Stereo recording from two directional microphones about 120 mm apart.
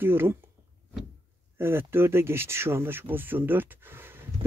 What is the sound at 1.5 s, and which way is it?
Speech, 20° right (ahead or behind).